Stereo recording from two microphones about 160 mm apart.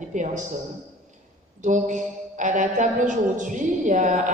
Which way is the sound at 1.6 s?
50° right (ahead or behind).